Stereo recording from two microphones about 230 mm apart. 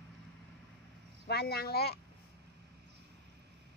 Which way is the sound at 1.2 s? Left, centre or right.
Left.